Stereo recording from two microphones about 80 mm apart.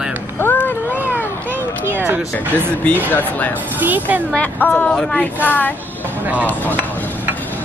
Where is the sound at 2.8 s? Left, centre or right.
Left.